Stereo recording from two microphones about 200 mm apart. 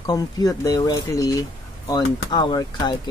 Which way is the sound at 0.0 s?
20° left (ahead or behind).